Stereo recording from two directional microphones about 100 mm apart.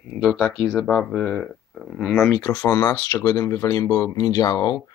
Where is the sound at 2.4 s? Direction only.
30° left (ahead or behind).